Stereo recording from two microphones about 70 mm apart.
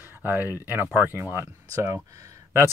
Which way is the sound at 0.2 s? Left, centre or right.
Right.